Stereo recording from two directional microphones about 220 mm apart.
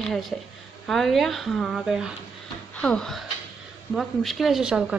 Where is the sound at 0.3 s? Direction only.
5° left (ahead or behind).